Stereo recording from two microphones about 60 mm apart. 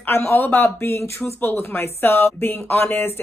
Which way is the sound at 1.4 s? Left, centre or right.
Left.